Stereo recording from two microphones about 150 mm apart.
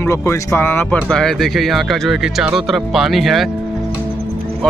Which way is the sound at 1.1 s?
Centre (ahead or behind).